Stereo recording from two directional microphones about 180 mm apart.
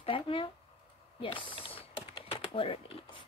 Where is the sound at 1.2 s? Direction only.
30° left (ahead or behind).